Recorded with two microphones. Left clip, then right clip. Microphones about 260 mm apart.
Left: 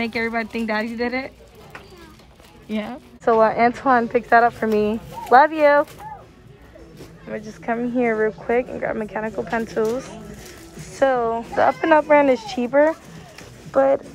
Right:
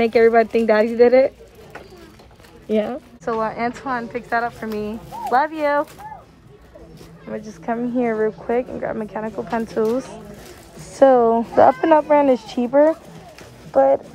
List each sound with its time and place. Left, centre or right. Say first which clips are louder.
0.1 s speech: right 10 dB; centre
2.7 s speech: right 8 dB; centre
3.3 s speech: left 7 dB; centre
7.3 s a woman's voice: even; centre
11.0 s speech: right 6 dB; centre